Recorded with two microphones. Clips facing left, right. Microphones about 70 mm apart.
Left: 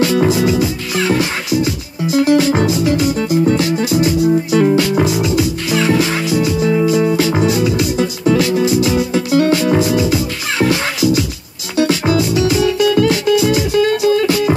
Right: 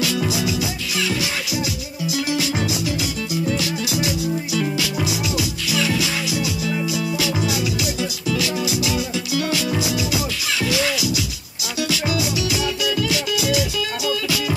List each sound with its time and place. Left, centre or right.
0.0 s music: left